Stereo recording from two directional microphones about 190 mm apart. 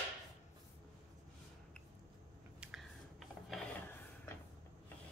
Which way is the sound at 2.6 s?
5° right (ahead or behind).